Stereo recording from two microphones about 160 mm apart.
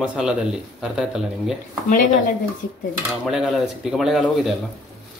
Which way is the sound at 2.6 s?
90° left.